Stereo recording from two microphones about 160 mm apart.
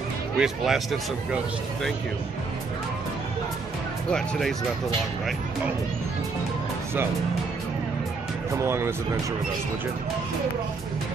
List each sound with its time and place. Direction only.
0.4 s speech: centre (ahead or behind)
4.1 s speech: centre (ahead or behind)
8.5 s speech: 15° right (ahead or behind)